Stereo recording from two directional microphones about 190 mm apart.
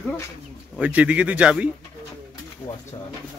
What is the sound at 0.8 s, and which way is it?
Speech, 5° right (ahead or behind).